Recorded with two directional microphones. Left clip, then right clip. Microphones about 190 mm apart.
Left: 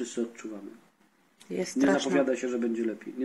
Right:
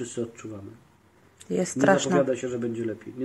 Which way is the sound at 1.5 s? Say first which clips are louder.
Right 5 dB; 60° right (ahead or behind).